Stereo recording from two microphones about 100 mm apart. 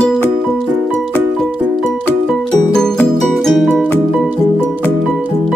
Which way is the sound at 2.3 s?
5° left (ahead or behind).